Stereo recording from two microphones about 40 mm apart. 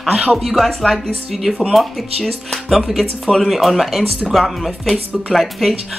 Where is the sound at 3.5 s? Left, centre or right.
Centre.